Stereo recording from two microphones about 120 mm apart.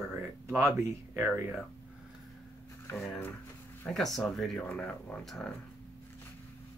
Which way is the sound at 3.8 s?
5° left (ahead or behind).